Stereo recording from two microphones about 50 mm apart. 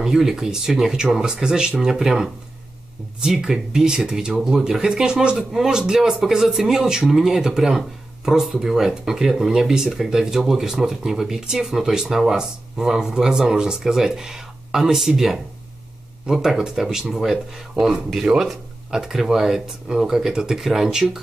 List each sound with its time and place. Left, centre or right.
0.0 s speech: centre